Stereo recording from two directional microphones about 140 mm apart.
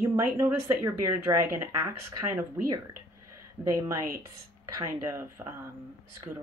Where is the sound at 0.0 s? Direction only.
20° right (ahead or behind).